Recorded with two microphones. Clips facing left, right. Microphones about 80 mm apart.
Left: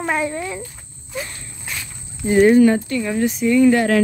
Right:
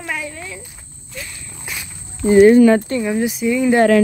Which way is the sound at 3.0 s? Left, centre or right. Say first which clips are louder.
Right 1 dB; centre.